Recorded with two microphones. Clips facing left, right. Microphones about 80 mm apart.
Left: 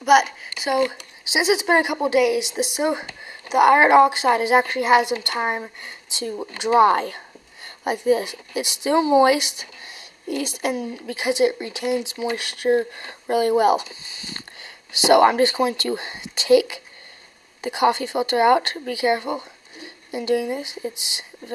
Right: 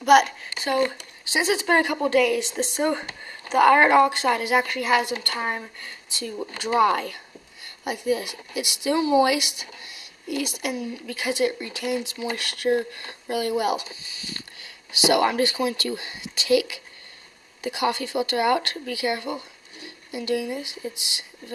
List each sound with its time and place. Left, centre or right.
0.0 s speech: centre; by 21.3 s left